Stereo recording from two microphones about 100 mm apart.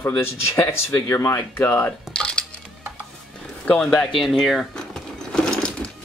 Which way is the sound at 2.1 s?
10° left (ahead or behind).